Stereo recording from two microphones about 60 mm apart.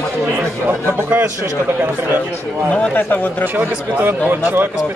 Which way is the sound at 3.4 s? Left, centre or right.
Right.